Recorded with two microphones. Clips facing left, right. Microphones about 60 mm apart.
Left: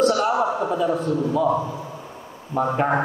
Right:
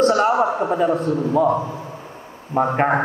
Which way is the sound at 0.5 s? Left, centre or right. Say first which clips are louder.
Right 3 dB; right.